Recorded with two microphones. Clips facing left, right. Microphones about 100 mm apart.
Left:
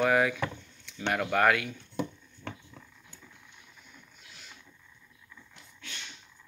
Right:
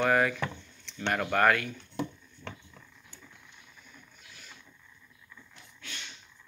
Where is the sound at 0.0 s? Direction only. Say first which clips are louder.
Left 1 dB; 10° left (ahead or behind).